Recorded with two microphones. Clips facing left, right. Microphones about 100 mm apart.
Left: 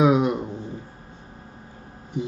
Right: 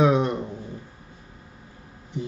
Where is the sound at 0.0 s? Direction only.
10° left (ahead or behind).